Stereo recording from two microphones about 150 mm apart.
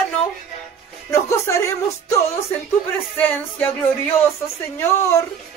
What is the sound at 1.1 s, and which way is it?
Music, 20° left (ahead or behind).